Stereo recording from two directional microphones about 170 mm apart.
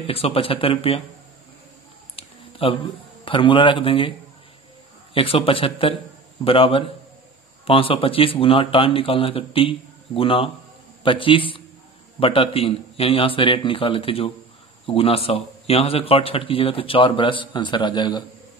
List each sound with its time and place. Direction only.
0.0 s a man's voice: 35° left (ahead or behind)
2.1 s a sound: 35° left (ahead or behind)
3.3 s speech: 30° left (ahead or behind)
5.1 s a man's voice: 30° left (ahead or behind)